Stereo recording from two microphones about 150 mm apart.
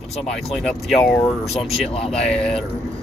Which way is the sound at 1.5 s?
40° left (ahead or behind).